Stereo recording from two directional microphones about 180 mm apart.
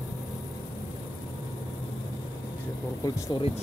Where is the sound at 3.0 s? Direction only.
20° left (ahead or behind).